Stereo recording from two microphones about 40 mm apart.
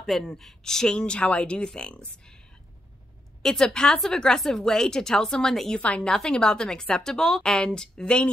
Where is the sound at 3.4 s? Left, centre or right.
Centre.